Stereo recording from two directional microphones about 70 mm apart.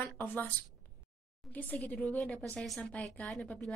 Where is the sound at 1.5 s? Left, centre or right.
Left.